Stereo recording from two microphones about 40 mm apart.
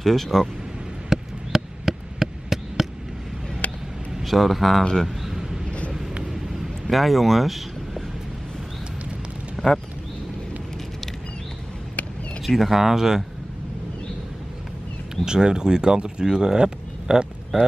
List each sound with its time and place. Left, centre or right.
0.0 s speech: centre
1.1 s a sound: centre
3.6 s a sound: left
4.2 s a man's voice: centre
5.0 s a sound: centre
5.7 s vehicle: left
6.9 s speech: centre
9.6 s speech: centre
12.4 s speech: centre
15.2 s speech: centre